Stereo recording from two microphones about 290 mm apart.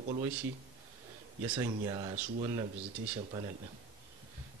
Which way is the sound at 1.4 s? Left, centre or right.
Centre.